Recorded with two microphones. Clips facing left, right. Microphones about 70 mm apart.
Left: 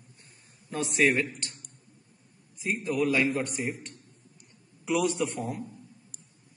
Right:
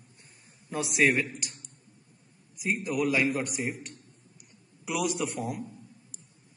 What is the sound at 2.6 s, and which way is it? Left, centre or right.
A man's voice, centre.